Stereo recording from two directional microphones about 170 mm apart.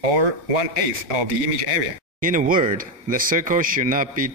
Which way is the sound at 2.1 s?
55° right (ahead or behind).